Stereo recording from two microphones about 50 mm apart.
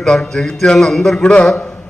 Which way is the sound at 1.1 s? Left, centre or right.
Left.